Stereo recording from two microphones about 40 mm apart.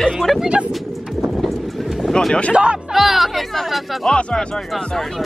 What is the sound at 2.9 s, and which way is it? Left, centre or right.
Speech, centre.